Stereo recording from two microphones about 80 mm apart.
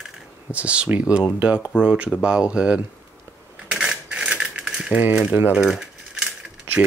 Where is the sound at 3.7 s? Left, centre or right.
Centre.